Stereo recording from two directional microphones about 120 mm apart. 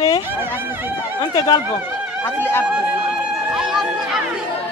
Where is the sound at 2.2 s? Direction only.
20° left (ahead or behind).